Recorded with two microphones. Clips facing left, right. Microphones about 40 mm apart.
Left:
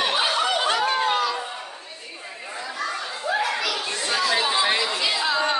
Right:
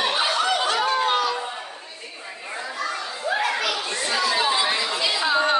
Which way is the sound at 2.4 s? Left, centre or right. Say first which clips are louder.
Right 2 dB; centre.